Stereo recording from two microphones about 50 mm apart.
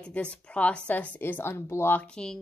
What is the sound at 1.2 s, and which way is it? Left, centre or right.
Speech, left.